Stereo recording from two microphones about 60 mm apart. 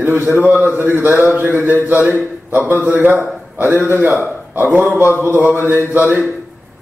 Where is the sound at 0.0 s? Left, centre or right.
Right.